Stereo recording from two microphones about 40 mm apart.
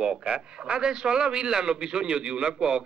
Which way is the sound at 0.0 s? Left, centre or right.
Right.